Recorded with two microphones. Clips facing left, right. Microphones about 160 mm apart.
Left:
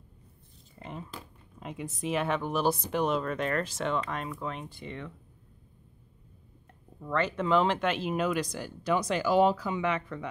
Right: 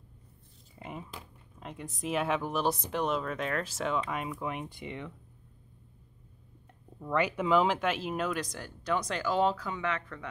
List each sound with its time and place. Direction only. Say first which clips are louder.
0.8 s speech: left 1 dB; 10° right (ahead or behind)
1.6 s speech: left 3 dB; 5° left (ahead or behind); by 5.1 s 15° right (ahead or behind)
7.0 s speech: even; 10° right (ahead or behind); by 10.2 s 10° left (ahead or behind)